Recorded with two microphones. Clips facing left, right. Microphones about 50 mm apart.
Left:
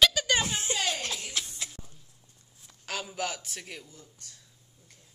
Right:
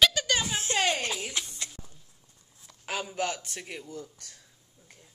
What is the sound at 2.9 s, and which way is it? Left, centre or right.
Speech, centre.